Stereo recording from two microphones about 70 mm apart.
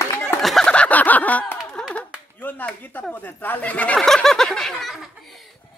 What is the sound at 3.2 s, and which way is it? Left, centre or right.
Speech, left.